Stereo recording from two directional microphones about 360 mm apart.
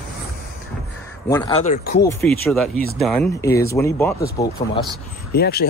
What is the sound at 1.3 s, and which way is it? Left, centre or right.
Speech, centre.